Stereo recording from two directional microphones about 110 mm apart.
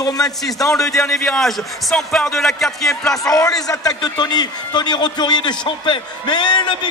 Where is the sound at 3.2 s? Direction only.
30° left (ahead or behind).